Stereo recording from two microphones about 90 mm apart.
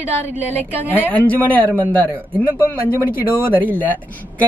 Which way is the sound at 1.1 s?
20° left (ahead or behind).